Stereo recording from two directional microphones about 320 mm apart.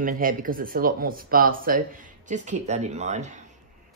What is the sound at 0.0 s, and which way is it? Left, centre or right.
Speech, right.